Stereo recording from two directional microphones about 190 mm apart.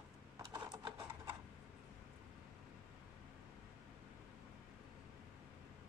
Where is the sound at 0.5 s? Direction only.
20° right (ahead or behind).